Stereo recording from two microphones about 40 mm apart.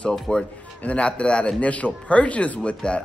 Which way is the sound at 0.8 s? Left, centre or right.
Left.